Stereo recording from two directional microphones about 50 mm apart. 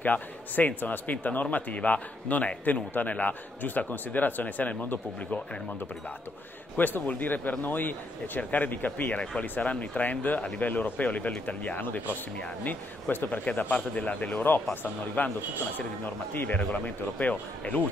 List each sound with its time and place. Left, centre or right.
0.0 s speech: left
7.1 s speech: left
13.1 s speech: left
13.7 s speech: left
14.4 s speech: left
16.3 s speech: left